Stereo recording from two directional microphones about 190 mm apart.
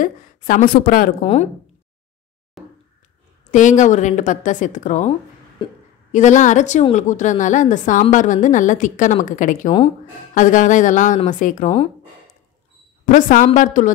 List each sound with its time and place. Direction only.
0.0 s a woman's voice: 45° left (ahead or behind)
1.2 s a woman's voice: 30° left (ahead or behind)
2.6 s a sound: centre (ahead or behind)
3.5 s a woman's voice: 40° left (ahead or behind)
6.1 s a woman's voice: 40° left (ahead or behind)
13.0 s a woman's voice: 45° left (ahead or behind)